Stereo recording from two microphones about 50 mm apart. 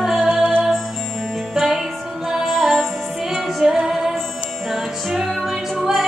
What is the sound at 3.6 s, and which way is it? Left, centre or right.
Music, centre.